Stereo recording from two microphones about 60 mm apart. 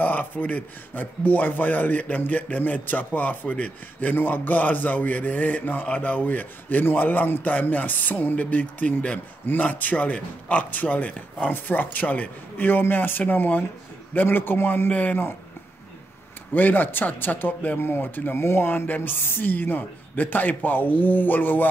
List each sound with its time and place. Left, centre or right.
0.0 s a man's voice: left
14.9 s a man's voice: left
16.5 s speech: left